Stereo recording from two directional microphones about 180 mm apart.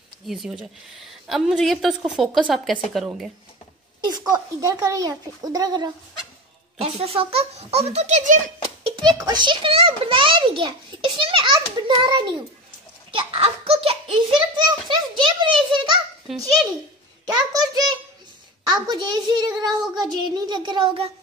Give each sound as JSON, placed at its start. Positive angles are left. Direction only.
{"t": 0.3, "sound": "a woman's voice", "side_deg": 0}
{"t": 4.0, "sound": "a child's voice", "side_deg": -20}
{"t": 6.8, "sound": "a child's voice", "side_deg": -35}
{"t": 16.3, "sound": "a woman's voice", "side_deg": 0}
{"t": 17.5, "sound": "a child's voice", "side_deg": -20}